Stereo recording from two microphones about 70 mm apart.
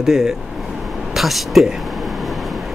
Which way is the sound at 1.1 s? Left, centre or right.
Centre.